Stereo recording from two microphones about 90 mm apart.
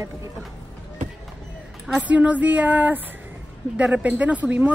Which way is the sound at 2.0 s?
15° right (ahead or behind).